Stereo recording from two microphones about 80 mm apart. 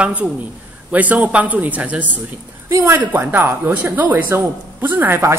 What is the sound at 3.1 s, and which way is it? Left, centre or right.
A woman's voice, right.